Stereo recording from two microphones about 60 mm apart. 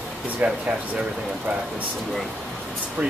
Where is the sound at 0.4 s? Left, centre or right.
Right.